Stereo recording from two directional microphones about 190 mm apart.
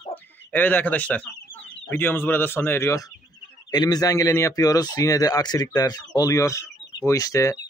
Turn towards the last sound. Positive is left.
turn(degrees=15)  # may be behind; listen again after turning